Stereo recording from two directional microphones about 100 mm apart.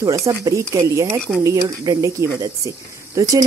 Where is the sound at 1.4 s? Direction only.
40° right (ahead or behind).